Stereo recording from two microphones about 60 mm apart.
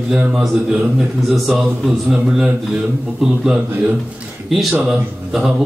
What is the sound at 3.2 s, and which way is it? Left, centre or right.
A man's voice, centre.